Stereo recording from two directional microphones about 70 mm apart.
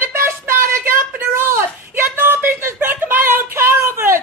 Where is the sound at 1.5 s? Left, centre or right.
Right.